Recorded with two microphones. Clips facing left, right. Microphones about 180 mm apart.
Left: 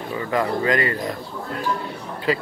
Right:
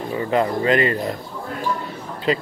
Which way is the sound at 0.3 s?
25° right (ahead or behind).